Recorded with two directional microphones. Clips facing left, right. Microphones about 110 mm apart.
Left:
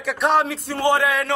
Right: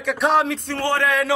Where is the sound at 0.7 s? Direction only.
15° left (ahead or behind).